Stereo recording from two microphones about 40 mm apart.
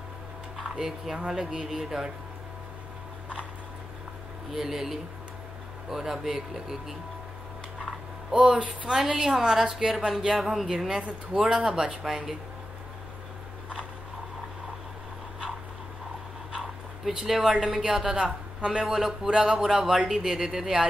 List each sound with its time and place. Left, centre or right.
0.6 s a woman's voice: centre
1.7 s a woman's voice: centre
4.5 s a woman's voice: centre
7.8 s a sound: centre
8.5 s speech: right
9.0 s a woman's voice: centre
10.9 s a woman's voice: centre
16.5 s speech: centre
18.0 s a woman's voice: centre